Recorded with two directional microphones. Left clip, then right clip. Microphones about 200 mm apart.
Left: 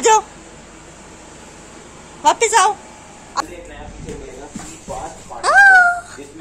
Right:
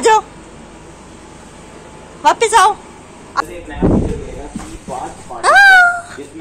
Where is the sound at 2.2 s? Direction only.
10° left (ahead or behind).